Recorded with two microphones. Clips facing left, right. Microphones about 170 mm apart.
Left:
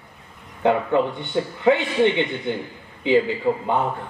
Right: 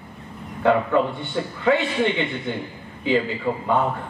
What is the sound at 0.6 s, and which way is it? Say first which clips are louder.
A man's voice: even; 20° left (ahead or behind).